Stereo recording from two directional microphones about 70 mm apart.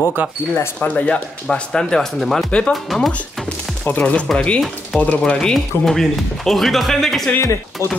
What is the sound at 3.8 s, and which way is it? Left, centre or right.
Speech, left.